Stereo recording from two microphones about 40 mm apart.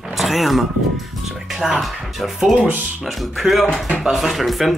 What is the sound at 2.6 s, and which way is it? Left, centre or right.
Speech, right.